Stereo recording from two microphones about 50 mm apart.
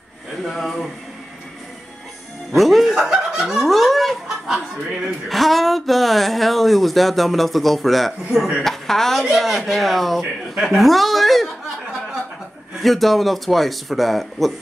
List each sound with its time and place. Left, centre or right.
0.5 s speech: centre
2.5 s music: centre
2.9 s fowl: centre
3.7 s chicken: centre
5.0 s speech: centre
12.8 s speech: centre